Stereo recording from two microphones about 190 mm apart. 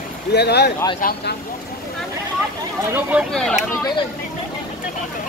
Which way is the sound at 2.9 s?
10° right (ahead or behind).